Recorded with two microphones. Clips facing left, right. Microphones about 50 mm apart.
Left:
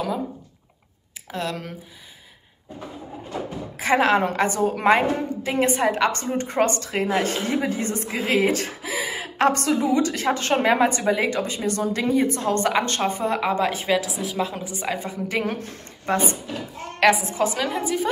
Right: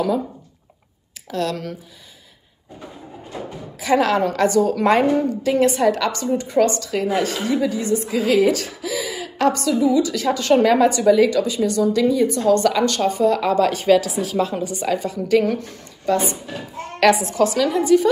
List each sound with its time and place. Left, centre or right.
1.2 s a woman's voice: centre
3.7 s a woman's voice: left
6.3 s a woman's voice: left
9.6 s a woman's voice: left
10.5 s speech: left
13.5 s a woman's voice: centre
14.6 s a woman's voice: centre
16.1 s speech: left
17.0 s a woman's voice: centre
17.3 s a woman's voice: centre